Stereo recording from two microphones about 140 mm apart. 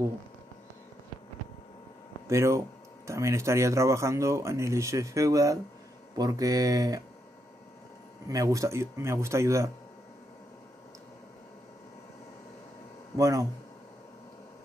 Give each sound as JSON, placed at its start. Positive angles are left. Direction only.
{"t": 2.2, "sound": "speech", "side_deg": -20}
{"t": 8.3, "sound": "speech", "side_deg": -25}
{"t": 13.2, "sound": "speech", "side_deg": -25}